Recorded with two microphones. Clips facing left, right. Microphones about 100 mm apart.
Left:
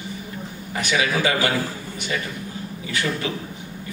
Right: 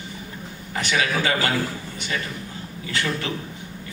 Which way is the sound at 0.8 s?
15° left (ahead or behind).